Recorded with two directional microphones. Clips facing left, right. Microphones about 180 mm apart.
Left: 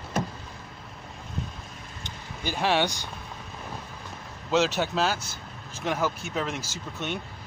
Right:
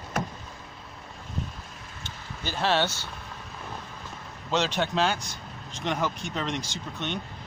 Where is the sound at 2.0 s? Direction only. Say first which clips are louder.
Left 2 dB; 15° left (ahead or behind).